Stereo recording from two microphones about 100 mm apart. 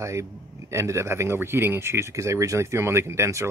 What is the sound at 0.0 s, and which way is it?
A man's voice, 30° right (ahead or behind).